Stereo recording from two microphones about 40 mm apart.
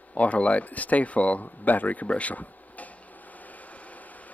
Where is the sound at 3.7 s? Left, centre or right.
Left.